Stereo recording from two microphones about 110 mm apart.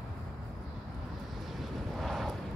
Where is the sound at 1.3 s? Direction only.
Centre (ahead or behind).